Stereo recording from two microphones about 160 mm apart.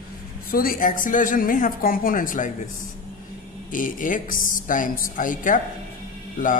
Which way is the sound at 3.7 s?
55° left (ahead or behind).